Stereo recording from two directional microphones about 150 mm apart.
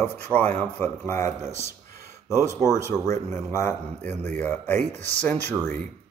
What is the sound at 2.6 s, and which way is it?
A man's voice, 15° left (ahead or behind).